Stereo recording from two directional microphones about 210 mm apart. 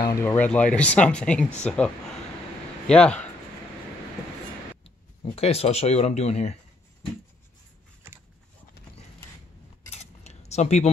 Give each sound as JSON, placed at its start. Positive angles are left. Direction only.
{"t": 0.0, "sound": "speech", "side_deg": 15}
{"t": 2.9, "sound": "speech", "side_deg": 5}
{"t": 4.8, "sound": "speech", "side_deg": 30}
{"t": 9.9, "sound": "a sound", "side_deg": 30}